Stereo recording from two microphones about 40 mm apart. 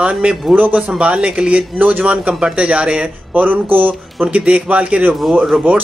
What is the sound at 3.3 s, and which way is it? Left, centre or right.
Speech, right.